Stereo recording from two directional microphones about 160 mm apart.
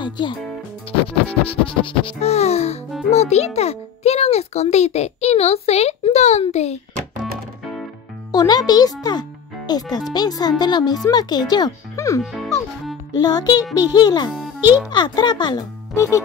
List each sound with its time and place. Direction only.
1.0 s a child's voice: 35° left (ahead or behind)
8.3 s a child's voice: 25° left (ahead or behind)
12.2 s a child's voice: centre (ahead or behind)
13.1 s a child's voice: 25° left (ahead or behind)
14.3 s a child's voice: 5° right (ahead or behind)
14.9 s a child's voice: 25° left (ahead or behind)